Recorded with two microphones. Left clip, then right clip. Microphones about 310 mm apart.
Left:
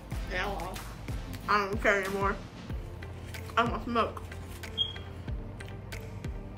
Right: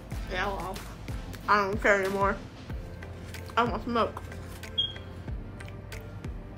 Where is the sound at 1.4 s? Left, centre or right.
Centre.